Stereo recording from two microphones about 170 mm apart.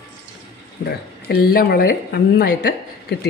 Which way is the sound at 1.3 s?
65° left (ahead or behind).